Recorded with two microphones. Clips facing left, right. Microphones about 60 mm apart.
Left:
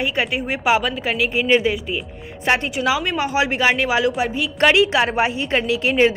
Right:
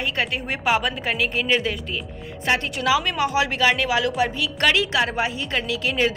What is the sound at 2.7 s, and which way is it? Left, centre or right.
A woman's voice, centre.